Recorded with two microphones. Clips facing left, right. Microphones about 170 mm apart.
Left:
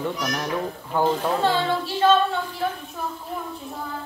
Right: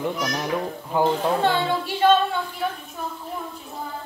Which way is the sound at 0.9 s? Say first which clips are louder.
Right 1 dB; 10° right (ahead or behind).